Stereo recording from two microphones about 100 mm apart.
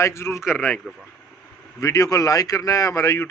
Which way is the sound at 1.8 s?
30° left (ahead or behind).